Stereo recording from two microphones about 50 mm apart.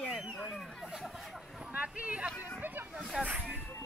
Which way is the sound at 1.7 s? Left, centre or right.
Right.